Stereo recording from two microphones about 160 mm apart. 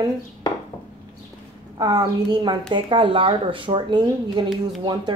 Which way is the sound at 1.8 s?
25° right (ahead or behind).